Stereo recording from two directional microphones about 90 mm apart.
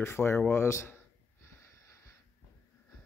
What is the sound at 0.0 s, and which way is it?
Speech, 30° left (ahead or behind).